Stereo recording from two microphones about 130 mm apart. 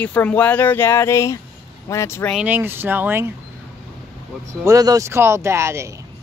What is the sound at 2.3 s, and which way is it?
Speech, 15° right (ahead or behind).